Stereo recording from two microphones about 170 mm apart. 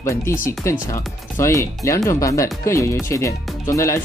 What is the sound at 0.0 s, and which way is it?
Speech, 15° left (ahead or behind).